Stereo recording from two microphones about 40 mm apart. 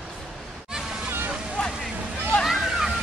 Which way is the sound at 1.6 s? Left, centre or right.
Left.